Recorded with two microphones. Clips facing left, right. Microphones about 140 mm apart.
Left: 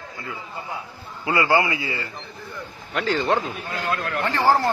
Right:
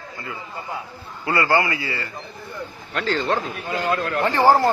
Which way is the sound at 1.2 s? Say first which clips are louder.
Even; 10° left (ahead or behind).